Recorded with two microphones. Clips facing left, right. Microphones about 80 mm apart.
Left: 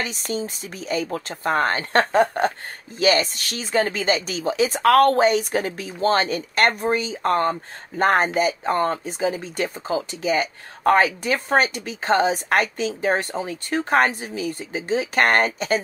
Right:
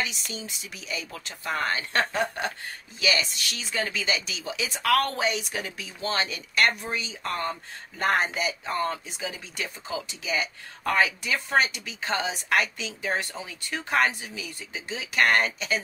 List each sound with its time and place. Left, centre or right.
0.0 s speech: left